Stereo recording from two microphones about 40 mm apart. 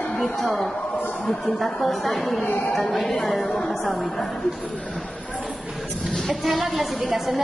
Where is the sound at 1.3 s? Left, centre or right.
Centre.